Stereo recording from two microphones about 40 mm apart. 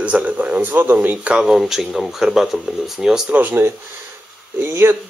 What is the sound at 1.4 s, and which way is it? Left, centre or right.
Speech, centre.